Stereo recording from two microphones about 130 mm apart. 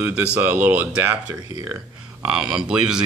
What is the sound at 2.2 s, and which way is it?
Speech, 5° right (ahead or behind).